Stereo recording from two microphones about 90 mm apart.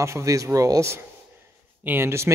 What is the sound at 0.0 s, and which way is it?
A man's voice, 35° right (ahead or behind).